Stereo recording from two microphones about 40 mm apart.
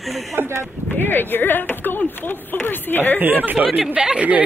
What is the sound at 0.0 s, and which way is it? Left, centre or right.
Speech, centre.